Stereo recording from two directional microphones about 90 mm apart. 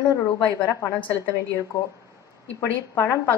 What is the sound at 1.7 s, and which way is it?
Speech, 35° left (ahead or behind).